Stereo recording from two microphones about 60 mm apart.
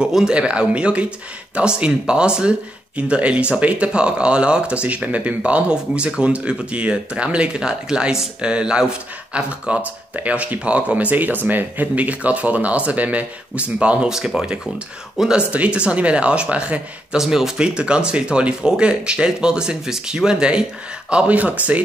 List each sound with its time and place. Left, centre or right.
0.0 s speech: centre
15.5 s speech: right
17.2 s speech: centre; by 21.8 s right